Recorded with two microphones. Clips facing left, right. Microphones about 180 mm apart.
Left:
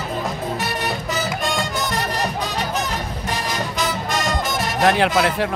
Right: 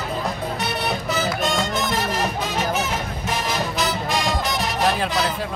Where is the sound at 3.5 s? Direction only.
5° right (ahead or behind).